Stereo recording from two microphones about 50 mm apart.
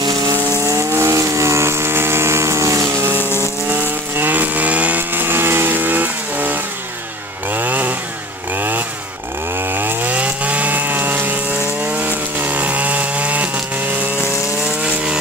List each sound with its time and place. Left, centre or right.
0.7 s vehicle: right
3.7 s chainsaw: right
10.1 s chainsaw: right
14.8 s chainsaw: right